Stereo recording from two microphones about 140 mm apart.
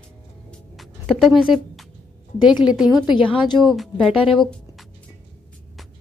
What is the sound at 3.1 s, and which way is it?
Speech, 35° left (ahead or behind).